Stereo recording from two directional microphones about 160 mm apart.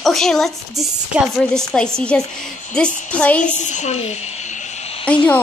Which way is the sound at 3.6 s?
50° left (ahead or behind).